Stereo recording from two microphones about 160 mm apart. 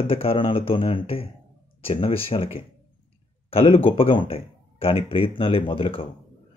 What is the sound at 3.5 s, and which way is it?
Speech, 35° left (ahead or behind).